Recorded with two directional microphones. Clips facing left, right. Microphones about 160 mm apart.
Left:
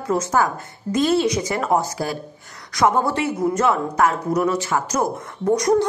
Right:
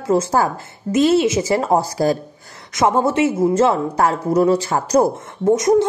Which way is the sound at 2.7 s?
20° right (ahead or behind).